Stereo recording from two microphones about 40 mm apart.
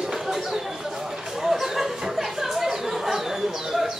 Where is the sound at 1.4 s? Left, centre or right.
Centre.